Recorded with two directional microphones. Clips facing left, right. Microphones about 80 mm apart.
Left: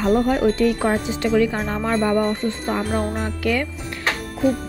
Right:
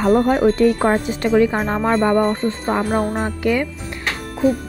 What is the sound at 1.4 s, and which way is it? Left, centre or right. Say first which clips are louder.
Speech: right 4 dB; right.